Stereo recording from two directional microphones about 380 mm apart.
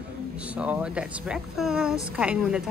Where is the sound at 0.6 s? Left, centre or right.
Centre.